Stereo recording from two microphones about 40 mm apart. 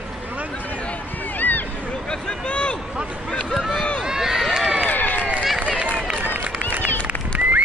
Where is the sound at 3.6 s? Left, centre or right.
Centre.